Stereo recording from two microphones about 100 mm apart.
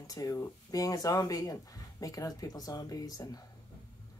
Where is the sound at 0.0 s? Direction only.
40° left (ahead or behind).